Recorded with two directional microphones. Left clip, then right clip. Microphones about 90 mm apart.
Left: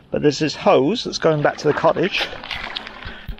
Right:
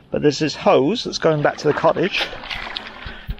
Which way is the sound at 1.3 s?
5° left (ahead or behind).